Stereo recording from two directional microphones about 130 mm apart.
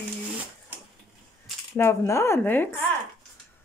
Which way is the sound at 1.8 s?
20° left (ahead or behind).